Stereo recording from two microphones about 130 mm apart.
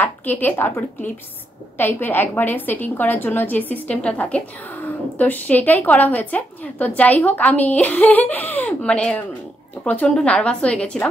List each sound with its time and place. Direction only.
0.0 s a woman's voice: 15° left (ahead or behind)